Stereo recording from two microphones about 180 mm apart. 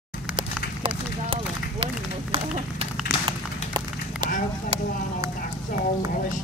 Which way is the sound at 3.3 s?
25° right (ahead or behind).